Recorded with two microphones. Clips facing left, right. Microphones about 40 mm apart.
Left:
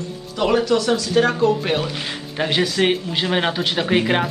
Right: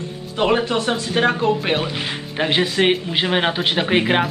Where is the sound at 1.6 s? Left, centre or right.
Right.